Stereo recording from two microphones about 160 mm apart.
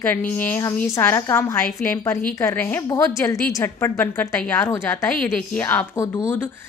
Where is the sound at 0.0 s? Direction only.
10° left (ahead or behind).